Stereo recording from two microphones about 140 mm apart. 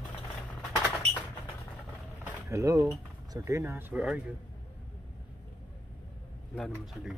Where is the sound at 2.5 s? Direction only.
20° right (ahead or behind).